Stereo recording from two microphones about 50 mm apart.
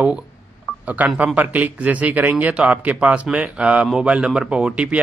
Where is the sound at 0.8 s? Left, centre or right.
Right.